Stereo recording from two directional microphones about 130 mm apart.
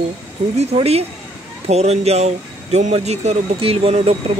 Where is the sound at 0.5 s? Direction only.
50° right (ahead or behind).